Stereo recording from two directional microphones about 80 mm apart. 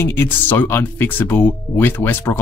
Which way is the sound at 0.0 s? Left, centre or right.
Left.